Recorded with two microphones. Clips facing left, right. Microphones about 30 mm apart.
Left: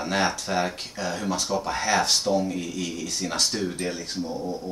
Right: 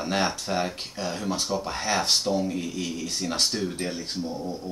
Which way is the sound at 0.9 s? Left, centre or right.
Centre.